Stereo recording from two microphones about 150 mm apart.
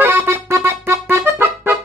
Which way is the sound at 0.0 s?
20° right (ahead or behind).